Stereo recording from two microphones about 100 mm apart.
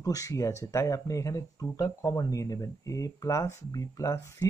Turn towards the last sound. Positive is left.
turn(degrees=35)  # may be behind; listen again after turning